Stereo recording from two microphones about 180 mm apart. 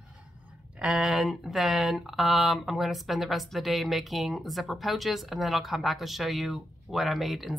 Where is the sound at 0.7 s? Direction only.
5° right (ahead or behind).